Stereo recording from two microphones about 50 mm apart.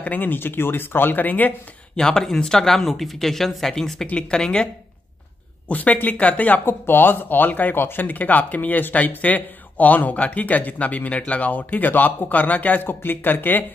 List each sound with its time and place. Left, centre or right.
0.0 s speech: left
2.0 s speech: centre
5.7 s speech: left
13.0 s speech: left